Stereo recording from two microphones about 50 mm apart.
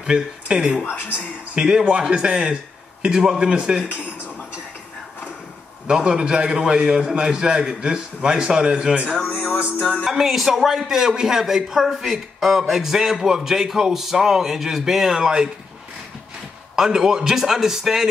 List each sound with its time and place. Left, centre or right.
0.0 s a man's voice: centre
5.9 s a man's voice: centre
10.0 s a man's voice: centre
16.7 s a man's voice: centre